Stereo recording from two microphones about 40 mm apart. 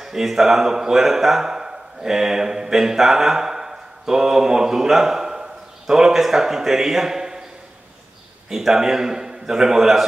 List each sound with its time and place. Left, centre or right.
0.0 s a man's voice: centre
8.5 s a man's voice: centre